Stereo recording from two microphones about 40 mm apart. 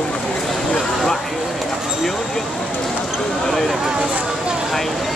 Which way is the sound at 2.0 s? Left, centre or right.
Centre.